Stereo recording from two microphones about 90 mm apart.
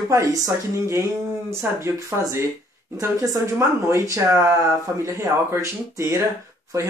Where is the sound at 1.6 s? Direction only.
20° right (ahead or behind).